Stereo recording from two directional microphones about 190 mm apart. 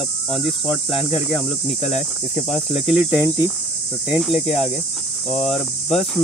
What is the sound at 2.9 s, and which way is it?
Cricket, 10° right (ahead or behind).